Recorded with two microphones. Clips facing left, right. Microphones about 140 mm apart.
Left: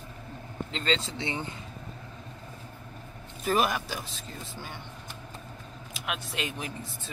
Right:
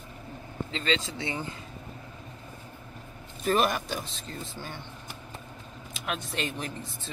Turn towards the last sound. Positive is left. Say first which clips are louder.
# right 2 dB
turn(degrees=5)  # may be behind; listen again after turning